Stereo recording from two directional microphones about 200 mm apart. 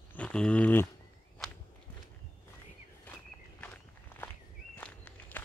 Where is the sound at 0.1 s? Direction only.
5° left (ahead or behind).